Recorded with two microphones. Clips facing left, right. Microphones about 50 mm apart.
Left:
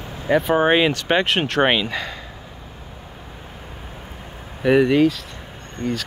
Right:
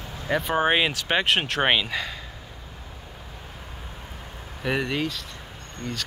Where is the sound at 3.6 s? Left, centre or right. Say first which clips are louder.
Left 3 dB; centre.